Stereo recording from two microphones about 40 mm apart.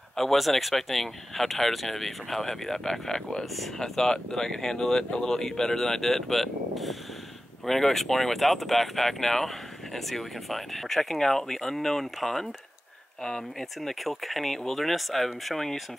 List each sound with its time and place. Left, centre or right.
0.1 s speech: centre
3.5 s speech: centre
13.7 s speech: centre